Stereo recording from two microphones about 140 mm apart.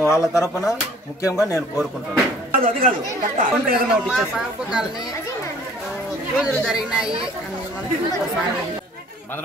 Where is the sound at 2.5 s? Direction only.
85° right.